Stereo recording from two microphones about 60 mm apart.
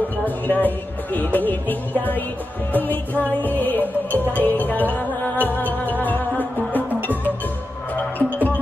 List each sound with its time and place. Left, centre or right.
0.2 s music: left
8.2 s music: left